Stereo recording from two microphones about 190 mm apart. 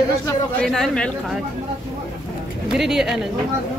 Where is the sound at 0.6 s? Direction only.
5° left (ahead or behind).